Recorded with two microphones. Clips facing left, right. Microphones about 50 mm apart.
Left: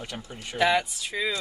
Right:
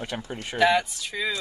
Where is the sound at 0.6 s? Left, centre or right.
Centre.